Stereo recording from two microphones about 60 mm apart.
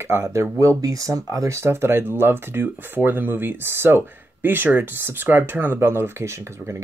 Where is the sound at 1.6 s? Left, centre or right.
Right.